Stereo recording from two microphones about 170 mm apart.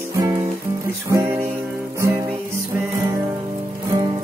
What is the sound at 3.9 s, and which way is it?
Music, 25° right (ahead or behind).